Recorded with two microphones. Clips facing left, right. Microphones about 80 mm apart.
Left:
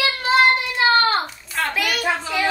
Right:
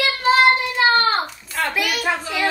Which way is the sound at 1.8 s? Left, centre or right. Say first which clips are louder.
Even; centre.